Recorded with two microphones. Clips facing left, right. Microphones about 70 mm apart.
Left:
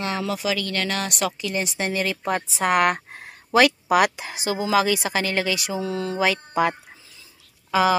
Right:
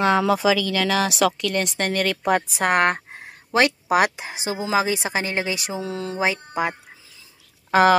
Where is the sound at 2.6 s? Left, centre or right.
Right.